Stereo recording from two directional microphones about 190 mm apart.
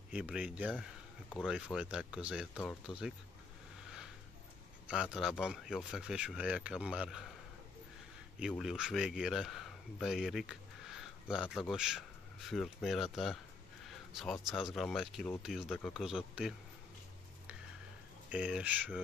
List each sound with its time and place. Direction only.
0.1 s speech: 5° right (ahead or behind)
4.8 s speech: 5° right (ahead or behind)
8.4 s speech: centre (ahead or behind)
18.3 s speech: 5° right (ahead or behind)